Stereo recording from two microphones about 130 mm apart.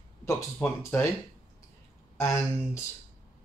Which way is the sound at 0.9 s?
15° left (ahead or behind).